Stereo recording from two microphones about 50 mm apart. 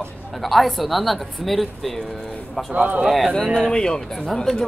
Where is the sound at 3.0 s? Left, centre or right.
Centre.